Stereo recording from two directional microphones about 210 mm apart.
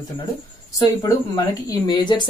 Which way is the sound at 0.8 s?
15° left (ahead or behind).